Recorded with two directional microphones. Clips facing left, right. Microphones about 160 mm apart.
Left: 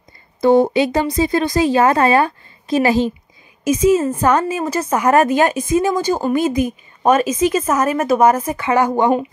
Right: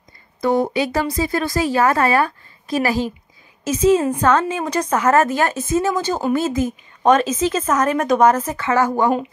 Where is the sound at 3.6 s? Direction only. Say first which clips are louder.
Left 1 dB; 10° left (ahead or behind).